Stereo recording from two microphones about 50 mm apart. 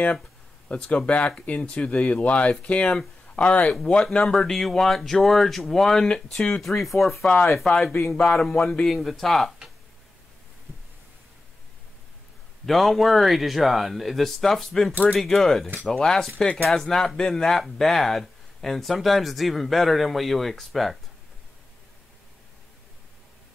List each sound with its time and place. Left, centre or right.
0.7 s speech: left; by 6.0 s centre
6.0 s speech: centre
6.5 s speech: centre
12.6 s speech: centre